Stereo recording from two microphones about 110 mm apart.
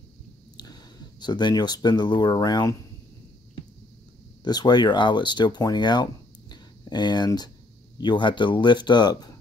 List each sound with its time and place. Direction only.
1.2 s speech: 40° left (ahead or behind)
4.5 s speech: 40° left (ahead or behind)